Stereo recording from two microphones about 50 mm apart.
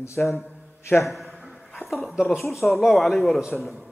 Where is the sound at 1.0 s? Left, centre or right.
Centre.